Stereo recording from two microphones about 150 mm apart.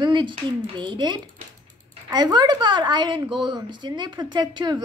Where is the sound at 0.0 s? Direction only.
30° right (ahead or behind).